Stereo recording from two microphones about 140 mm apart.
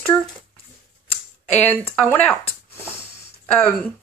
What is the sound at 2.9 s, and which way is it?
Sniff, 15° left (ahead or behind).